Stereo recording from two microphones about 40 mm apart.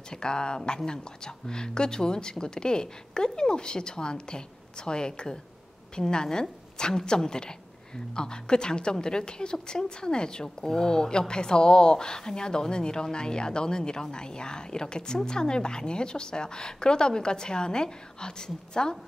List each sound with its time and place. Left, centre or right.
0.1 s a woman's voice: left